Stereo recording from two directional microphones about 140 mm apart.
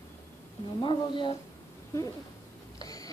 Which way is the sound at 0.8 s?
35° left (ahead or behind).